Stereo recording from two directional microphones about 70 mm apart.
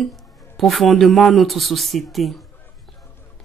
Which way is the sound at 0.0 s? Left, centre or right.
Centre.